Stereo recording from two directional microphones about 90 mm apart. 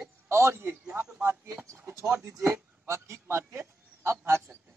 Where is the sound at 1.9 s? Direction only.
30° right (ahead or behind).